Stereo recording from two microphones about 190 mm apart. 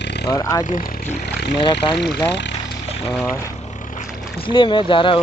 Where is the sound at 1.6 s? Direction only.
25° left (ahead or behind).